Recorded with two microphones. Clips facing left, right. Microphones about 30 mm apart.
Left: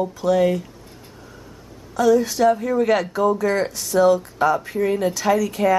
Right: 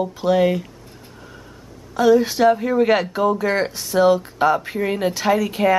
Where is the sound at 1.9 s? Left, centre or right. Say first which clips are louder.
Right 2 dB; right.